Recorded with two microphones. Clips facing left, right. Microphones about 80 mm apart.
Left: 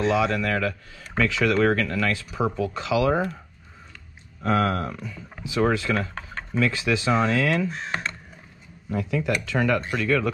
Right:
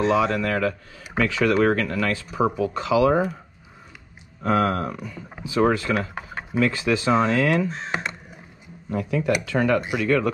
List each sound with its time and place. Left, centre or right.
0.0 s speech: right
4.4 s speech: right
5.9 s computer keyboard: centre
6.6 s speech: right
7.9 s crow: centre
8.9 s speech: right